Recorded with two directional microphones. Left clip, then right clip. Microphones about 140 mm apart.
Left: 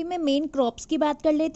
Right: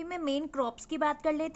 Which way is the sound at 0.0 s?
35° left (ahead or behind).